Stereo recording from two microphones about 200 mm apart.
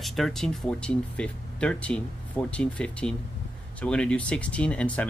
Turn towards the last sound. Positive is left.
turn(degrees=5)  # may be behind; listen again after turning